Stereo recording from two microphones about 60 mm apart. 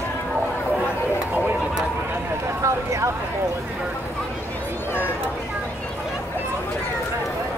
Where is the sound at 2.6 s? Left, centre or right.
Right.